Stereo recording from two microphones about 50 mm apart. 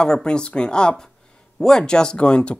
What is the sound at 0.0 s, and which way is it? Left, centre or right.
A woman's voice, centre.